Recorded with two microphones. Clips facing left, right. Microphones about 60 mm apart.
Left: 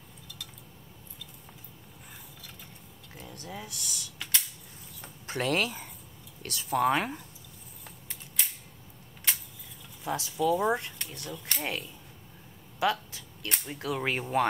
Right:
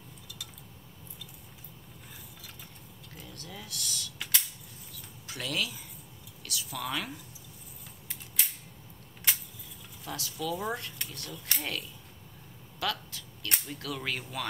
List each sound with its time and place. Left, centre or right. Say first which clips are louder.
3.3 s speech: left 5 dB; left
5.0 s a sound: left 8 dB; left
6.4 s speech: left 11 dB; left
8.4 s a sound: even; centre
10.0 s speech: left 7 dB; left
10.4 s speech: left 7 dB; centre
11.3 s speech: even; centre
12.7 s a sound: left 6 dB; left
13.7 s speech: left 9 dB; left